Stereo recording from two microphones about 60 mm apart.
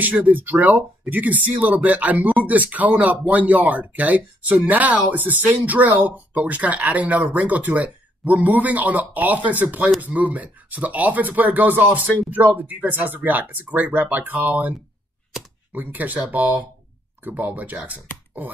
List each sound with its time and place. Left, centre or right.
0.0 s speech: right